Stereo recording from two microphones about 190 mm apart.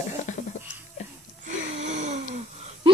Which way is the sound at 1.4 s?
40° right (ahead or behind).